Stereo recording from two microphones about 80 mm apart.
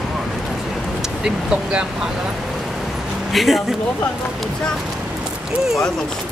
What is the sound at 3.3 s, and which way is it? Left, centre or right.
Speech, centre.